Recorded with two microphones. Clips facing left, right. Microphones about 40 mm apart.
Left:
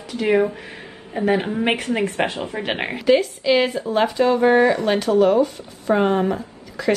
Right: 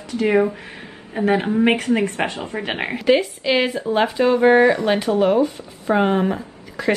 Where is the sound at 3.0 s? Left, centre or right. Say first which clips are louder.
Even; centre.